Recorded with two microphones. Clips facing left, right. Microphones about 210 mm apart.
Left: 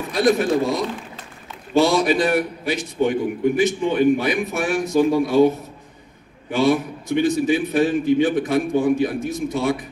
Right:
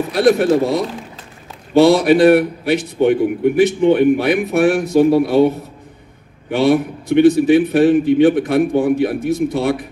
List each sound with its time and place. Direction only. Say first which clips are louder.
0.1 s a man's voice: right 4 dB; 65° right (ahead or behind)
6.5 s a man's voice: right 4 dB; 60° right (ahead or behind)